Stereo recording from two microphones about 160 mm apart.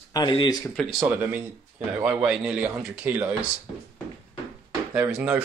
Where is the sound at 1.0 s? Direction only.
10° right (ahead or behind).